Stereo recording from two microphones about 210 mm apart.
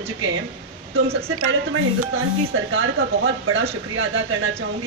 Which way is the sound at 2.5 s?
70° right (ahead or behind).